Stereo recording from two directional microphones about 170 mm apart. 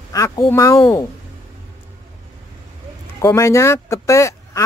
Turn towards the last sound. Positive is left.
turn(degrees=15)  # may be behind; listen again after turning